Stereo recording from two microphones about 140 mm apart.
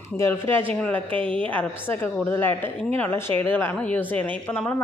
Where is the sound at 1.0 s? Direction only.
40° right (ahead or behind).